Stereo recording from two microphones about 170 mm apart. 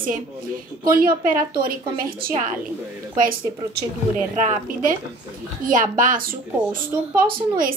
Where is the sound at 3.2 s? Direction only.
55° right (ahead or behind).